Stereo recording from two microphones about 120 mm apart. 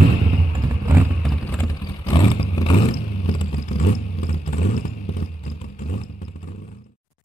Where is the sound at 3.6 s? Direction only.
90° left.